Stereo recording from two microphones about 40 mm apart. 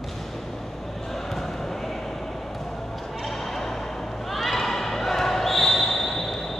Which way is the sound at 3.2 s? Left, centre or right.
Centre.